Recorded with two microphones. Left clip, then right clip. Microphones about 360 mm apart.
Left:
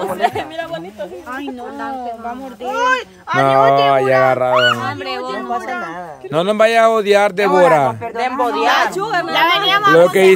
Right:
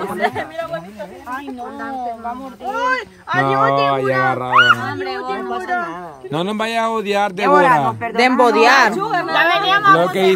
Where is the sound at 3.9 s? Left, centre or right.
Centre.